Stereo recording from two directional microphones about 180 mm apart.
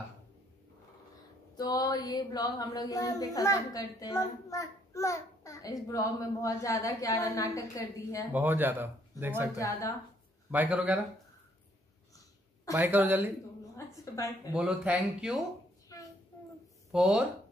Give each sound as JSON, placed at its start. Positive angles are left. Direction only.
{"t": 1.5, "sound": "a child's voice", "side_deg": 20}
{"t": 8.3, "sound": "speech", "side_deg": -10}
{"t": 9.6, "sound": "a child's voice", "side_deg": 15}
{"t": 10.5, "sound": "speech", "side_deg": -10}
{"t": 12.7, "sound": "speech", "side_deg": -10}
{"t": 13.7, "sound": "a woman's voice", "side_deg": 20}
{"t": 14.5, "sound": "speech", "side_deg": -5}
{"t": 16.9, "sound": "speech", "side_deg": -5}